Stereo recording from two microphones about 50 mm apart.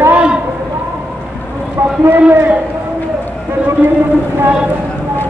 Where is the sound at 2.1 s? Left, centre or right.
Right.